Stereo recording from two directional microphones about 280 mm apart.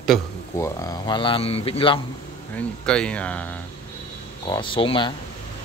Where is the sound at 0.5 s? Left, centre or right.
Centre.